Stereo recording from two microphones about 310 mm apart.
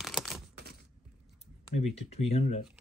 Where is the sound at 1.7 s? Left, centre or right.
Left.